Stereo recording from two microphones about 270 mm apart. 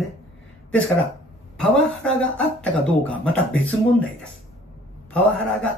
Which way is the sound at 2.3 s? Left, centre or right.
Centre.